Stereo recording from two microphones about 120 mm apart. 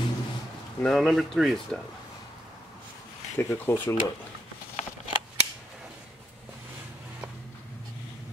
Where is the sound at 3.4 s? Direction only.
25° left (ahead or behind).